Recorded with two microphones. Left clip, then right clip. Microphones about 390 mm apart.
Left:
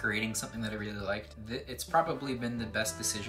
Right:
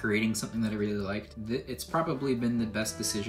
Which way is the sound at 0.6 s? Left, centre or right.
Centre.